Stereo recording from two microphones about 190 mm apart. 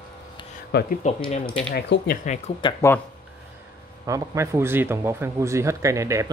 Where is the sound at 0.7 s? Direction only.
55° left (ahead or behind).